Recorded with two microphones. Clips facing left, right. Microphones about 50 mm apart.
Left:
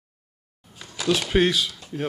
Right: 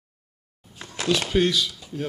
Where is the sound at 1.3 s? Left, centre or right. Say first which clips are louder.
Left 2 dB; centre.